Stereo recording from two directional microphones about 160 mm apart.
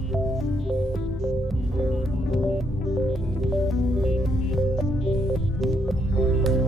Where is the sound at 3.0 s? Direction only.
Centre (ahead or behind).